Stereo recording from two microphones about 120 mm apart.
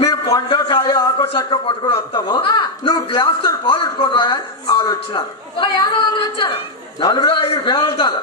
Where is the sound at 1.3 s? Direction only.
45° left (ahead or behind).